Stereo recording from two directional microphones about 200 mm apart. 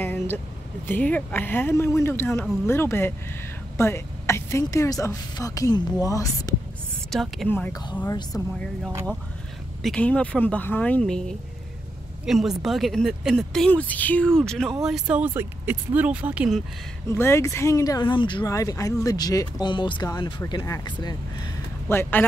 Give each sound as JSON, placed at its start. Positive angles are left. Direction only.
{"t": 0.0, "sound": "vehicle", "side_deg": 10}
{"t": 0.8, "sound": "speech", "side_deg": 10}
{"t": 7.1, "sound": "speech", "side_deg": 0}
{"t": 9.8, "sound": "speech", "side_deg": 5}
{"t": 17.1, "sound": "speech", "side_deg": 10}